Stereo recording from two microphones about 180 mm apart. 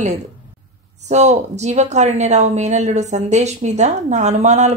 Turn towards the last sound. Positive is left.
turn(degrees=-40)  # may be behind; listen again after turning